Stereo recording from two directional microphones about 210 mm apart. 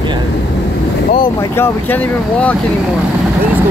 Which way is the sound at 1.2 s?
10° left (ahead or behind).